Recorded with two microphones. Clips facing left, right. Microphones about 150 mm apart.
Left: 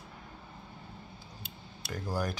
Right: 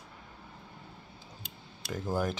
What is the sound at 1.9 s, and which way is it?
Speech, 20° right (ahead or behind).